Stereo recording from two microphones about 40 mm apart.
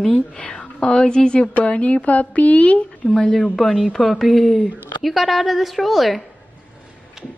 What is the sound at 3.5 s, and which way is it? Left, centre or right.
A woman's voice, centre.